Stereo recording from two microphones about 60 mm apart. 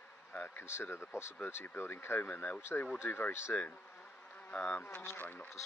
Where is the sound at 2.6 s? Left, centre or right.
Left.